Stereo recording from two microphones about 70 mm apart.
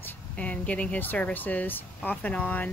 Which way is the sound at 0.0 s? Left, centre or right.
Left.